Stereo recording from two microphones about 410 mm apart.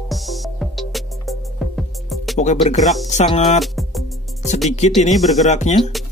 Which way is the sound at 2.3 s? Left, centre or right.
Centre.